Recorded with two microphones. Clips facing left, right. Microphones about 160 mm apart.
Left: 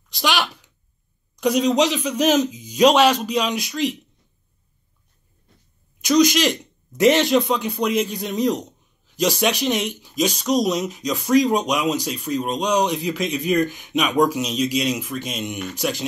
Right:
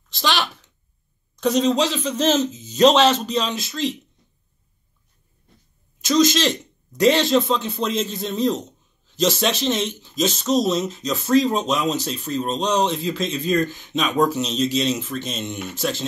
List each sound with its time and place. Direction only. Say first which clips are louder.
0.1 s a sound: left 1 dB; 15° left (ahead or behind)
1.3 s a man's voice: even; 15° left (ahead or behind)
5.9 s a man's voice: left 1 dB; 15° left (ahead or behind)